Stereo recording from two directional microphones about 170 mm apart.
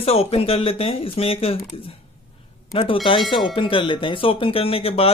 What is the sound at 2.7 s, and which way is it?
Speech, 30° left (ahead or behind).